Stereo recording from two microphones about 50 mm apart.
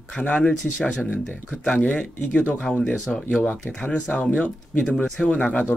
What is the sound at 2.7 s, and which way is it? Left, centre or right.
Speech, left.